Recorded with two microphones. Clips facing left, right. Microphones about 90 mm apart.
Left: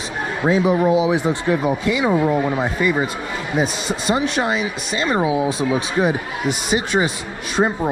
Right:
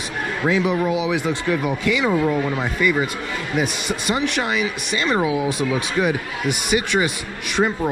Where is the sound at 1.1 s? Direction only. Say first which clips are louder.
Left 2 dB; 25° left (ahead or behind).